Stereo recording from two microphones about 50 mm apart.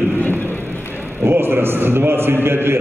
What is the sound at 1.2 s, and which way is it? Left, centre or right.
A man's voice, right.